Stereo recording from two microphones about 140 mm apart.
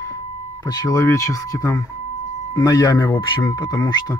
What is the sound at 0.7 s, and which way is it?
Speech, 25° left (ahead or behind).